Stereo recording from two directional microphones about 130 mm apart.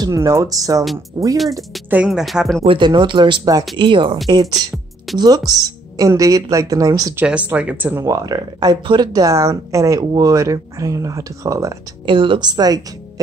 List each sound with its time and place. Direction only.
0.0 s speech: 25° right (ahead or behind)
2.0 s speech: centre (ahead or behind)
2.6 s speech: 45° right (ahead or behind); by 7.2 s 30° right (ahead or behind)
7.2 s speech: 10° right (ahead or behind)
8.0 s speech: 30° right (ahead or behind)
12.1 s speech: 40° right (ahead or behind)